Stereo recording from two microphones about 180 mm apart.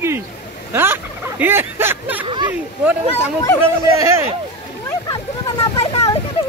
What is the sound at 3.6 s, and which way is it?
Speech, 15° right (ahead or behind).